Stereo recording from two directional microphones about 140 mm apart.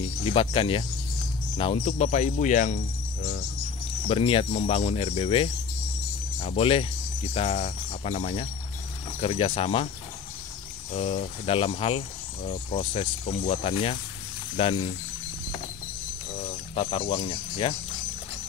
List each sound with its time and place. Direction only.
0.0 s speech: 40° left (ahead or behind); by 2.8 s 60° left (ahead or behind)
4.1 s speech: 40° left (ahead or behind)
10.9 s speech: 45° left (ahead or behind)
16.3 s speech: 45° left (ahead or behind)